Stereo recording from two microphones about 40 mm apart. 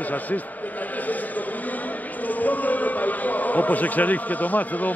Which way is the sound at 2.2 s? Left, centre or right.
Left.